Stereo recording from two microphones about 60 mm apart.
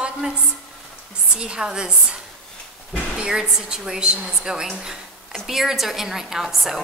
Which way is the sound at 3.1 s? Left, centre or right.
Centre.